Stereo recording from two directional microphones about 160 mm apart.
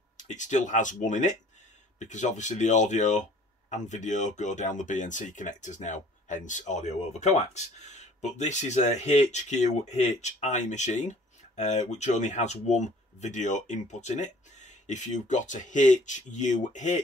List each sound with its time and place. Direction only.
0.2 s speech: 50° left (ahead or behind)